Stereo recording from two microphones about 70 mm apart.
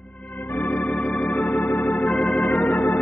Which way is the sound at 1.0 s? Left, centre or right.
Centre.